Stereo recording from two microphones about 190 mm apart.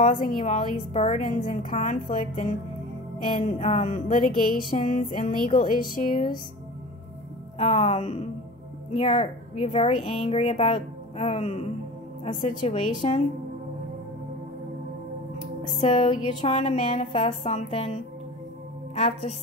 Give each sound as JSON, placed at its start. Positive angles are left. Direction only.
{"t": 0.0, "sound": "a woman's voice", "side_deg": 25}
{"t": 1.7, "sound": "speech", "side_deg": 40}
{"t": 3.3, "sound": "speech", "side_deg": 30}
{"t": 4.8, "sound": "music", "side_deg": 45}
{"t": 5.5, "sound": "speech", "side_deg": 25}
{"t": 5.9, "sound": "music", "side_deg": 45}
{"t": 7.5, "sound": "speech", "side_deg": 30}
{"t": 15.8, "sound": "speech", "side_deg": 30}
{"t": 16.5, "sound": "speech", "side_deg": 40}
{"t": 18.9, "sound": "speech", "side_deg": 35}